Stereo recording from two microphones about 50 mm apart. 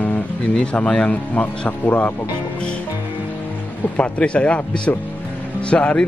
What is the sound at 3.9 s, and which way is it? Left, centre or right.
Speech, left.